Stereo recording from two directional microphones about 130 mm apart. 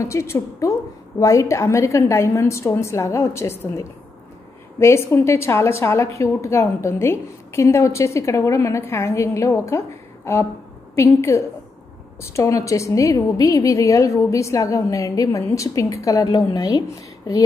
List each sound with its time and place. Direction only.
0.0 s a woman's voice: 20° left (ahead or behind)